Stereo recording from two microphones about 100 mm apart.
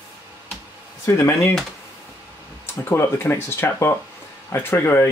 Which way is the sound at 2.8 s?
25° left (ahead or behind).